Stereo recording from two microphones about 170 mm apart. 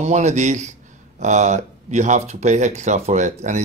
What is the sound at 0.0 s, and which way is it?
Speech, 40° right (ahead or behind).